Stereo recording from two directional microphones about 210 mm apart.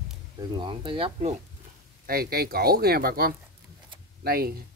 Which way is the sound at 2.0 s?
45° right (ahead or behind).